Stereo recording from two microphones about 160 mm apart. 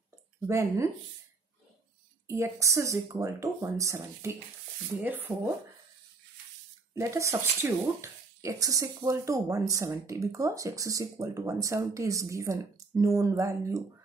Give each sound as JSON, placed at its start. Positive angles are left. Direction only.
{"t": 0.5, "sound": "speech", "side_deg": -20}
{"t": 2.2, "sound": "speech", "side_deg": -15}
{"t": 7.0, "sound": "speech", "side_deg": -20}